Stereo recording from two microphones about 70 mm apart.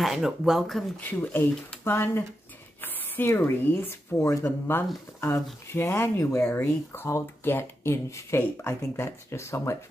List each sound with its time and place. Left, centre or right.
0.0 s speech: centre
1.0 s speech: left
4.5 s speech: left